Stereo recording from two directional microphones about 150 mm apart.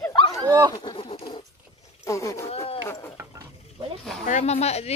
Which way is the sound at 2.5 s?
40° left (ahead or behind).